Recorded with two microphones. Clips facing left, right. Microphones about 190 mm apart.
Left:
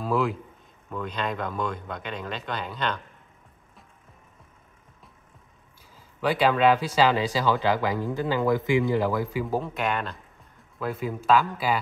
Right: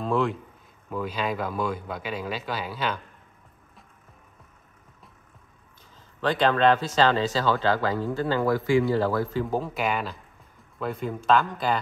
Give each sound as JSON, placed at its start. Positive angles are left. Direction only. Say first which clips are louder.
{"t": 0.0, "sound": "a man's voice", "louder": "even", "side_deg": 5}
{"t": 6.2, "sound": "speech", "louder": "even", "side_deg": 10}
{"t": 9.5, "sound": "speech", "louder": "even", "side_deg": 0}